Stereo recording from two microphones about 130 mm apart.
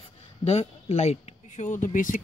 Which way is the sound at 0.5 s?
50° left (ahead or behind).